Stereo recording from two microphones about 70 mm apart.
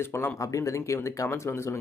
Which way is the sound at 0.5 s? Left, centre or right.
Left.